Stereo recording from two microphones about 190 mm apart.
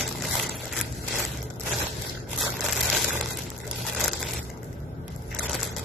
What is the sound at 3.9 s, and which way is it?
Crushing, centre (ahead or behind).